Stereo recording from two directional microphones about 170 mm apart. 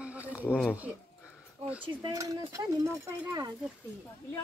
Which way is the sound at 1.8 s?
25° right (ahead or behind).